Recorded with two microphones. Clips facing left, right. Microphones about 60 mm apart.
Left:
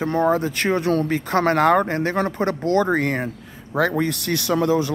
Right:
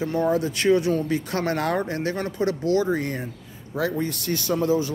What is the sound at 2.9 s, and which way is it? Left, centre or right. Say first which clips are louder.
Speech: left 5 dB; left.